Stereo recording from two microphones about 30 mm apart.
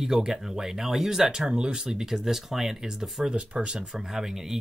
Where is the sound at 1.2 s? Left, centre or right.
Right.